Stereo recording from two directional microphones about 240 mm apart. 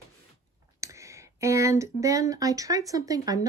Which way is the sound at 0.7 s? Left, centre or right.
Centre.